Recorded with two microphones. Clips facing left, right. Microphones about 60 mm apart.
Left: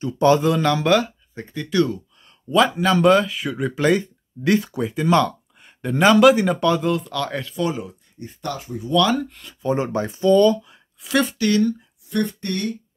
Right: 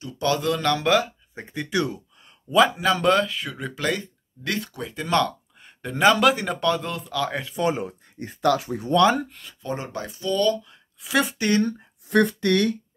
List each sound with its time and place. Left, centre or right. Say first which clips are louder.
0.0 s speech: left 8 dB; left
0.5 s speech: left 3 dB; centre
1.3 s speech: left 3 dB; centre
2.5 s speech: left 2 dB; centre
7.5 s speech: right 1 dB; right
8.2 s speech: right 8 dB; right
8.9 s speech: even; right
9.3 s speech: left 1 dB; centre
9.6 s speech: left 9 dB; centre
9.9 s speech: left 9 dB; left
10.6 s a sound: left 1 dB; centre
11.1 s speech: left 2 dB; centre
11.3 s speech: left 2 dB; right
12.1 s speech: right 4 dB; right